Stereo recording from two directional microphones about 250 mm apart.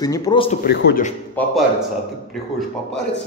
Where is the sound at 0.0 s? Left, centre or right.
Centre.